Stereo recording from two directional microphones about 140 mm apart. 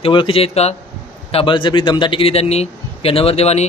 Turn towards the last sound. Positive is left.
turn(degrees=45)  # may be behind; listen again after turning